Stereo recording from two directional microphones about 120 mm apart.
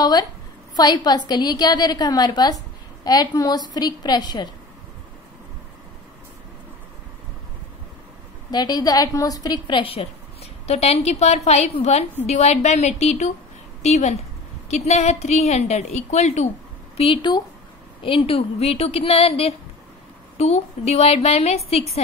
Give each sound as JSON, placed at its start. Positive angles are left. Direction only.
{"t": 0.0, "sound": "a woman's voice", "side_deg": 35}
{"t": 8.5, "sound": "a woman's voice", "side_deg": 35}
{"t": 16.9, "sound": "a woman's voice", "side_deg": 45}